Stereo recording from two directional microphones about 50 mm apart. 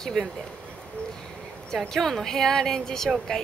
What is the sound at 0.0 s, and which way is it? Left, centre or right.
Speech, centre.